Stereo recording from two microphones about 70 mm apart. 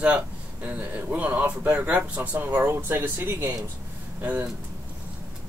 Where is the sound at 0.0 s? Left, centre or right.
Centre.